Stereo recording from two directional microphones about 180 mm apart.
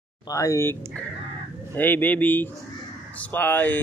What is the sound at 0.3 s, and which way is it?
Speech, 20° left (ahead or behind).